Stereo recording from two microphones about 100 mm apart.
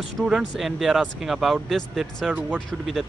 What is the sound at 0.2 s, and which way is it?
Speech, 5° right (ahead or behind).